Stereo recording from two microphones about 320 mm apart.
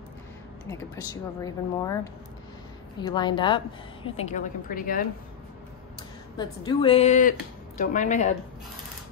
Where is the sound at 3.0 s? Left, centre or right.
Centre.